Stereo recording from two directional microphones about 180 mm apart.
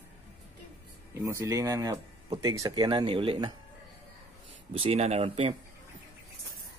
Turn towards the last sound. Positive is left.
turn(degrees=-30)  # may be behind; listen again after turning